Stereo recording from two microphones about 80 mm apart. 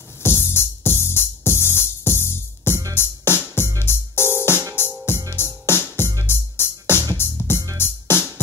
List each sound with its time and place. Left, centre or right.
0.2 s music: left